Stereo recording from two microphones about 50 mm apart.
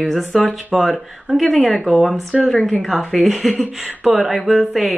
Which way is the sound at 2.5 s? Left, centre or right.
Centre.